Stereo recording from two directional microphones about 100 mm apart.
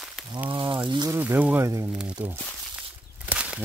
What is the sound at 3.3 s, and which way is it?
Walk, 15° right (ahead or behind).